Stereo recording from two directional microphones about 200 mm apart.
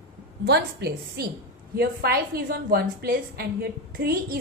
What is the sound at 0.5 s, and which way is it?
A woman's voice, 55° right (ahead or behind).